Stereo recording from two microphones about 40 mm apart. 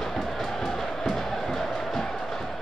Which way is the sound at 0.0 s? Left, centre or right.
Centre.